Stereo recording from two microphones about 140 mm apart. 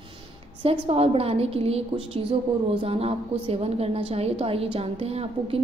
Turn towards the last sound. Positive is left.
turn(degrees=-45)  # may be behind; listen again after turning